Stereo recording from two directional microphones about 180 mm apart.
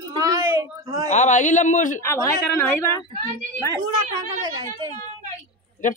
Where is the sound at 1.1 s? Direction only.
45° left (ahead or behind).